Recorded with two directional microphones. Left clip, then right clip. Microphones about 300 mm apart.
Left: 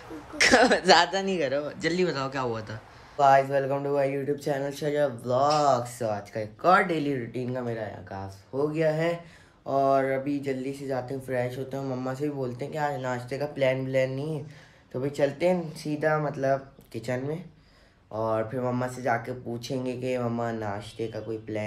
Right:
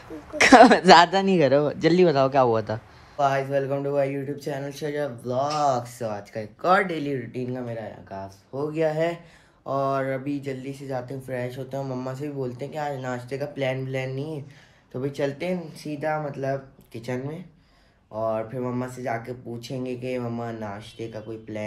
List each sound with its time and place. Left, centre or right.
0.4 s speech: centre
3.2 s speech: centre